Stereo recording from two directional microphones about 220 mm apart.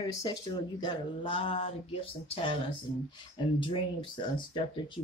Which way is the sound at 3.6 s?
20° left (ahead or behind).